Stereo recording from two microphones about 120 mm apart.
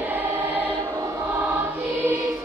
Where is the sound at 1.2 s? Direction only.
15° right (ahead or behind).